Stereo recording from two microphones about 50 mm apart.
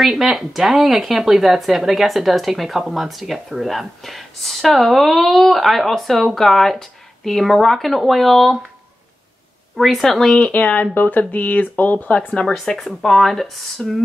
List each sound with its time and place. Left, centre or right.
0.0 s speech: centre
9.8 s a woman's voice: centre
10.4 s speech: left
12.4 s a woman's voice: centre